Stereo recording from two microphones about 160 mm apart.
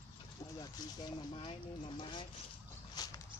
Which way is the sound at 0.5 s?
25° left (ahead or behind).